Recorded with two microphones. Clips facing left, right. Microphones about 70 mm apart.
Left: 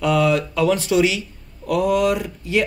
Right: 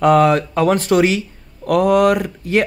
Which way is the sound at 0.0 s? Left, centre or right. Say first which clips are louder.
Right 6 dB; right.